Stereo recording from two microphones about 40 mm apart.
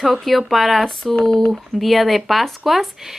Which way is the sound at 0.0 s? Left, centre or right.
Centre.